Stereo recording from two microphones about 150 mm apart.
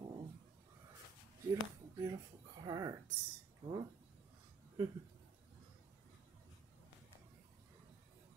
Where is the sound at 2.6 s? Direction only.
25° right (ahead or behind).